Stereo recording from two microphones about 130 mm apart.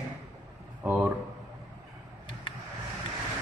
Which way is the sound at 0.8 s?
10° right (ahead or behind).